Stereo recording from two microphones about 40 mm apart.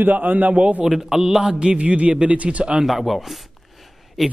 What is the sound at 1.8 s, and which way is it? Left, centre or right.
Speech, right.